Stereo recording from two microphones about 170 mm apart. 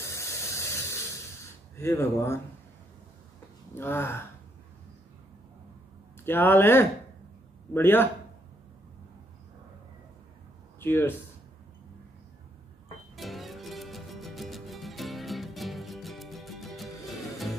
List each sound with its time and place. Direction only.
0.0 s a sound: 15° left (ahead or behind)
1.8 s speech: 15° left (ahead or behind)
3.7 s speech: 15° left (ahead or behind)
6.2 s speech: 10° left (ahead or behind)
10.8 s speech: 15° left (ahead or behind)
13.1 s music: centre (ahead or behind)